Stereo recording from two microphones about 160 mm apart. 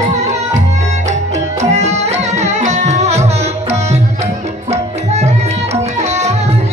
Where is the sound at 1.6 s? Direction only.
45° right (ahead or behind).